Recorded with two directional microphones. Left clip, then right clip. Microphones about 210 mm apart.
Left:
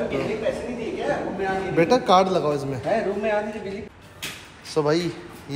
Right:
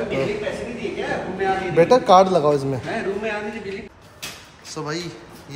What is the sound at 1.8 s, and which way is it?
Speech, 10° left (ahead or behind).